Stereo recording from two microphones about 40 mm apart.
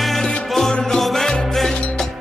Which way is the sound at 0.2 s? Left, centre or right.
Left.